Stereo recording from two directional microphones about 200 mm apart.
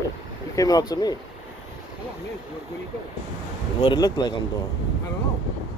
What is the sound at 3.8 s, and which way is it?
Speech, 20° left (ahead or behind).